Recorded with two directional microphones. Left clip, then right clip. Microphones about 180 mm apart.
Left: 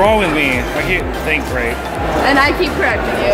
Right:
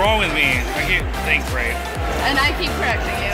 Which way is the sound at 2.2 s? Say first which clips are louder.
Left 6 dB; 45° right (ahead or behind).